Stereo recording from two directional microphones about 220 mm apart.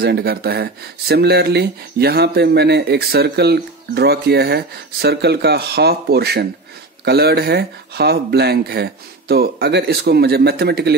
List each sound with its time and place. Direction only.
0.0 s speech: 45° right (ahead or behind)